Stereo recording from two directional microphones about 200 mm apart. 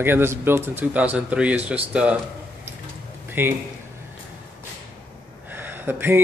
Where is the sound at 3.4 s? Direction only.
10° right (ahead or behind).